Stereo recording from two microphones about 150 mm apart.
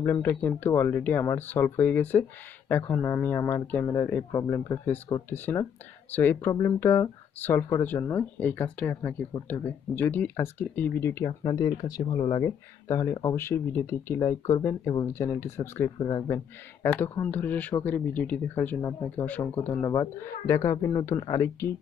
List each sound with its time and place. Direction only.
0.0 s speech: 15° left (ahead or behind)